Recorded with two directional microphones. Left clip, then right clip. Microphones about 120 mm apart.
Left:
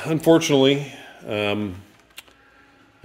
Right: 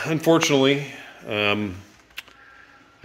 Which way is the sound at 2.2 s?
15° left (ahead or behind).